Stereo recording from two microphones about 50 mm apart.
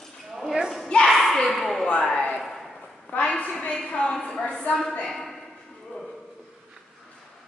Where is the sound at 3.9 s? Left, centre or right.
Centre.